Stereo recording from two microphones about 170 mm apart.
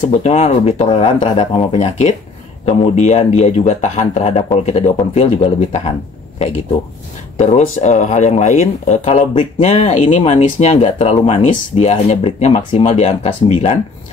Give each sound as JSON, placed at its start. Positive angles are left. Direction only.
{"t": 0.1, "sound": "speech", "side_deg": 40}
{"t": 7.3, "sound": "speech", "side_deg": 45}